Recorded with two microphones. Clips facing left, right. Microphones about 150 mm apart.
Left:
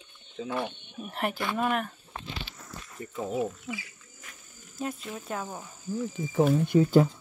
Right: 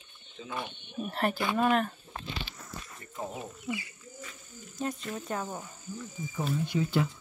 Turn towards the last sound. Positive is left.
turn(degrees=45)  # may be behind; listen again after turning